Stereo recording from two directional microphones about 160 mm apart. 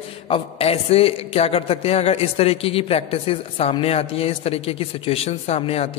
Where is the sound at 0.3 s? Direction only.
40° left (ahead or behind).